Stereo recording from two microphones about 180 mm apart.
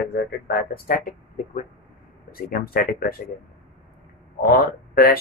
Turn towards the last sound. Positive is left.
turn(degrees=55)  # may be behind; listen again after turning